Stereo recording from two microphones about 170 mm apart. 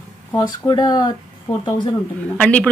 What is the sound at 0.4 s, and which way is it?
Speech, 25° left (ahead or behind).